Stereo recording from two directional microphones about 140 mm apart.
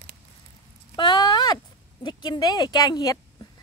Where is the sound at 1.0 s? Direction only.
35° left (ahead or behind).